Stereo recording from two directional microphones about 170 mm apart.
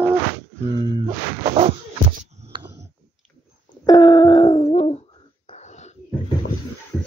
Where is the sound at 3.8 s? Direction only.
25° left (ahead or behind); by 6.0 s 45° left (ahead or behind).